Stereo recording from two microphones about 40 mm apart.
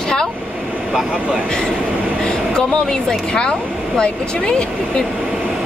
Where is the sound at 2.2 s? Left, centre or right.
Centre.